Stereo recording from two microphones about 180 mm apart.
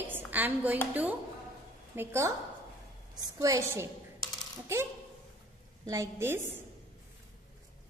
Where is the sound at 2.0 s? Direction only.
15° right (ahead or behind).